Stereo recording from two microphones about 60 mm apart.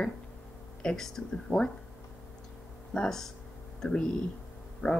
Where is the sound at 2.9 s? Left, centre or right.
Centre.